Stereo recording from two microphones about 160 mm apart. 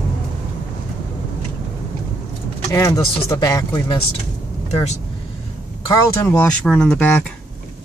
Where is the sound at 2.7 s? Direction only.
20° left (ahead or behind).